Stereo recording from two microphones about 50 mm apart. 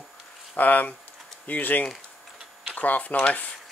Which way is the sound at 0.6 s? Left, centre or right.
Left.